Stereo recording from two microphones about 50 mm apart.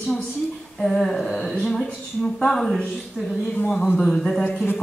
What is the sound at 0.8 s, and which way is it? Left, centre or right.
Speech, centre.